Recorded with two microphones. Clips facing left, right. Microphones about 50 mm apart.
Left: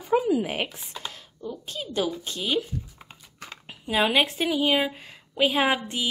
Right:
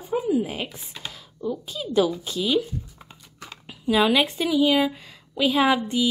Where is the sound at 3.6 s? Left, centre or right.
Left.